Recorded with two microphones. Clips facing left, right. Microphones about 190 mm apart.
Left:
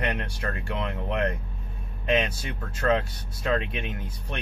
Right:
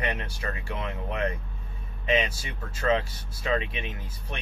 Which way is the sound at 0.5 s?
60° left (ahead or behind).